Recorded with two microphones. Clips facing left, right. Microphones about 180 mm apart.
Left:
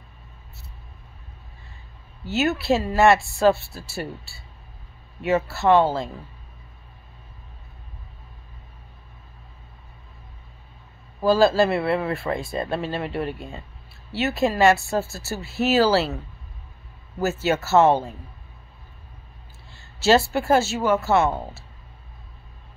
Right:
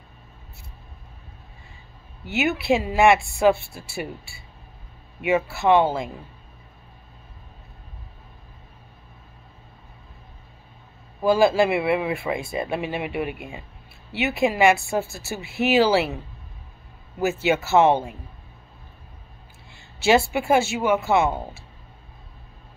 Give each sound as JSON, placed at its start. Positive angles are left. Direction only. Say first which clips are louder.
{"t": 2.3, "sound": "speech", "louder": "even", "side_deg": -15}
{"t": 11.2, "sound": "speech", "louder": "even", "side_deg": -15}
{"t": 17.2, "sound": "speech", "louder": "right 1 dB", "side_deg": -15}
{"t": 19.7, "sound": "speech", "louder": "left 1 dB", "side_deg": -15}